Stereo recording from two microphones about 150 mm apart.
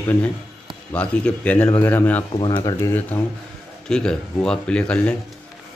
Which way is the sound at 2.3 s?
30° left (ahead or behind).